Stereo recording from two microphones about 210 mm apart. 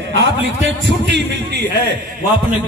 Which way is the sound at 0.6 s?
55° right (ahead or behind).